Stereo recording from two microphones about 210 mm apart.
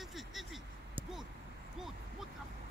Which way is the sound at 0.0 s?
Centre (ahead or behind).